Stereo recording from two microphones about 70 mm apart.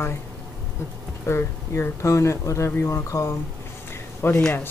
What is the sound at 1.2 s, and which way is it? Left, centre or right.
Speech, left.